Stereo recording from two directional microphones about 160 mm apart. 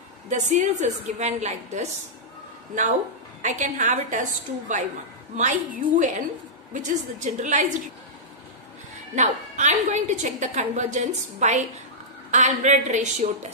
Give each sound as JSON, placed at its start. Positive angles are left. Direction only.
{"t": 0.3, "sound": "a woman's voice", "side_deg": -50}
{"t": 9.1, "sound": "a woman's voice", "side_deg": -45}